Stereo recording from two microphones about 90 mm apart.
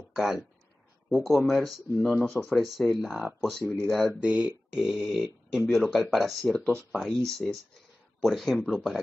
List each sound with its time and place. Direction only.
0.1 s speech: 5° right (ahead or behind)
3.6 s speech: 30° right (ahead or behind)
4.1 s speech: 15° right (ahead or behind)
6.5 s speech: 15° left (ahead or behind)
6.9 s speech: 5° left (ahead or behind)